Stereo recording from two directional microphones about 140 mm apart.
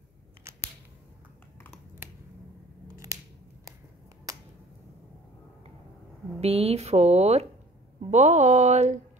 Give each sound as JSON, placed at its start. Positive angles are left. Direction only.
{"t": 4.3, "sound": "finger snapping", "side_deg": -25}
{"t": 6.4, "sound": "speech", "side_deg": -45}